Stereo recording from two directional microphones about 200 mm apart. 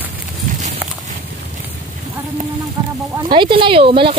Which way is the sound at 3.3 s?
25° right (ahead or behind).